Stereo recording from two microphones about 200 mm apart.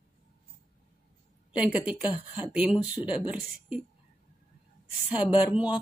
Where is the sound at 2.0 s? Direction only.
25° left (ahead or behind).